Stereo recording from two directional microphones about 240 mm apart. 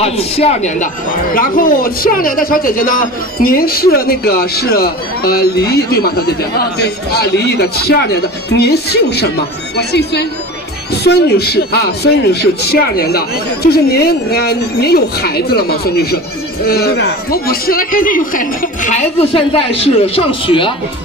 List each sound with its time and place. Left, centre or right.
0.0 s a man's voice: left